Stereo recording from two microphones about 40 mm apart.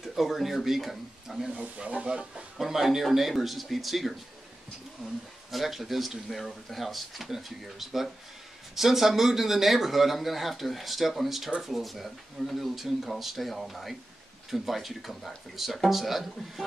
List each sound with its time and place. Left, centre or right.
0.0 s speech: centre
1.5 s speech: right
2.5 s speech: centre